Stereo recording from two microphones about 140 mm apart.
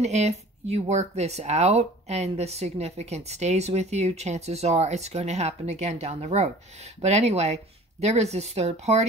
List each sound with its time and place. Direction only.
0.0 s speech: 55° right (ahead or behind)